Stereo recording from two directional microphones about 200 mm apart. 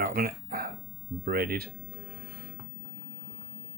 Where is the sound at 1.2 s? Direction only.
50° right (ahead or behind).